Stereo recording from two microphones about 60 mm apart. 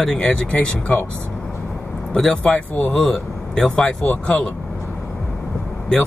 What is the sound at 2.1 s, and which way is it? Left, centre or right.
Speech, centre.